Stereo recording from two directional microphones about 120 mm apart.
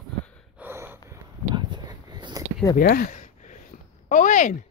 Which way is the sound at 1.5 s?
40° right (ahead or behind).